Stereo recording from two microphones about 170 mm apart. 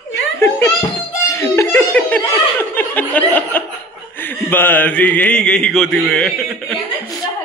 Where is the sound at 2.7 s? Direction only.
10° left (ahead or behind).